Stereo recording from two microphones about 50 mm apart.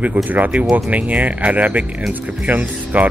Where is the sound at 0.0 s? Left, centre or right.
Right.